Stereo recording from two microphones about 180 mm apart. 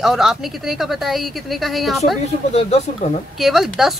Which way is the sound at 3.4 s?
Centre (ahead or behind).